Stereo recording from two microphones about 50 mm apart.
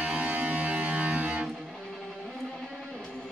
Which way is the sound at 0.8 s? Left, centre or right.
Right.